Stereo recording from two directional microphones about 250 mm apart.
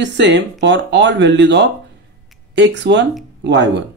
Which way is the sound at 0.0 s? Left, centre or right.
Right.